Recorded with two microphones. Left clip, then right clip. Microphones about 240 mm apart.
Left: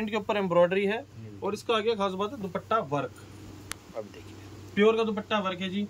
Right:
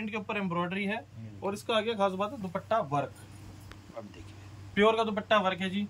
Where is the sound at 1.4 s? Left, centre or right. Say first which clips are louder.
Left 3 dB; centre.